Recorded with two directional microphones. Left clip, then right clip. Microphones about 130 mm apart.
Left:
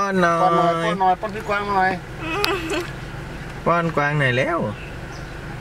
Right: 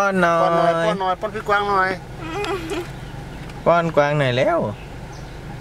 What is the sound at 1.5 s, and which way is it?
Speech, 25° right (ahead or behind).